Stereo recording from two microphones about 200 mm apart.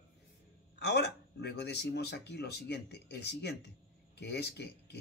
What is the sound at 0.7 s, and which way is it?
Speech, 60° left (ahead or behind).